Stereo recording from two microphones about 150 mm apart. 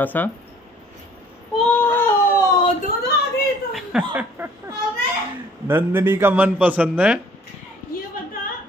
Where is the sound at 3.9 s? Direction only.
5° right (ahead or behind).